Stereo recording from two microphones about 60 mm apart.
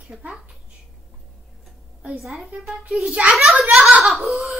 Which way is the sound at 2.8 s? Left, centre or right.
Right.